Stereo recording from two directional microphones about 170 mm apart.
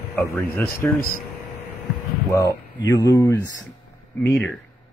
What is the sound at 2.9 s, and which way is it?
Speech, 20° left (ahead or behind).